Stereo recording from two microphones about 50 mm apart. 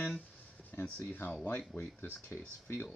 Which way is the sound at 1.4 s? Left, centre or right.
Left.